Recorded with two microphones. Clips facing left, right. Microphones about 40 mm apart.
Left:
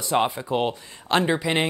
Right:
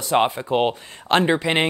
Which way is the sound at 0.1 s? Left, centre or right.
Right.